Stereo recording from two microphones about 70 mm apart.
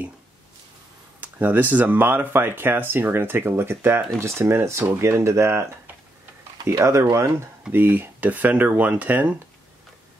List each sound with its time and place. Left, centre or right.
1.2 s speech: right
6.8 s speech: right
7.7 s speech: right